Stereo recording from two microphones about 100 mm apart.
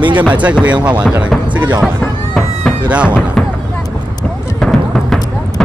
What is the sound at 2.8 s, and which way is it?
Speech, 15° right (ahead or behind).